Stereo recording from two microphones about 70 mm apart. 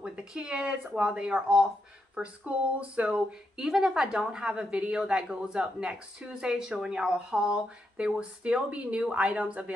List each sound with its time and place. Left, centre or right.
0.0 s speech: centre
2.8 s speech: centre